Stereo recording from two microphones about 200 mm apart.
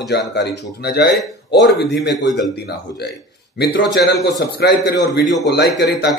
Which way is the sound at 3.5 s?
55° left (ahead or behind).